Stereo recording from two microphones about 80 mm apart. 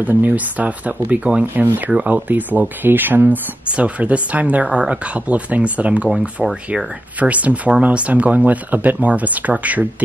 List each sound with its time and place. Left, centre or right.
0.0 s speech: right
7.2 s speech: centre